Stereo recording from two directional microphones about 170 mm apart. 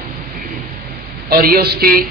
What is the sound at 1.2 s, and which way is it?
Speech, 60° right (ahead or behind).